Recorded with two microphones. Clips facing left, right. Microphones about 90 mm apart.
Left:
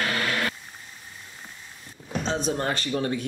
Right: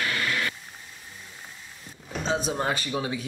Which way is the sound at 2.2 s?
5° right (ahead or behind).